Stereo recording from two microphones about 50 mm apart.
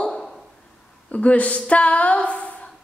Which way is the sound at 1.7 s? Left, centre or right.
Left.